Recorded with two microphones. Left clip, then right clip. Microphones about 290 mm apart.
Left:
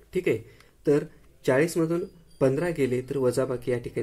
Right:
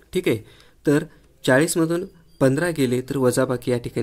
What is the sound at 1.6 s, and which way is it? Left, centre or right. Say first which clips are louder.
Speech: right 4 dB; right.